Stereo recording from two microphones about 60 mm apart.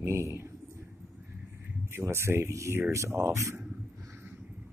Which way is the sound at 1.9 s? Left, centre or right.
Right.